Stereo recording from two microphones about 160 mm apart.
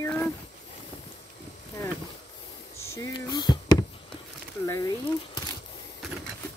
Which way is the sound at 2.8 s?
20° left (ahead or behind).